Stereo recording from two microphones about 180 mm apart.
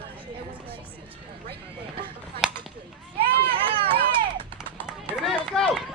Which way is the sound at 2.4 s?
Centre (ahead or behind).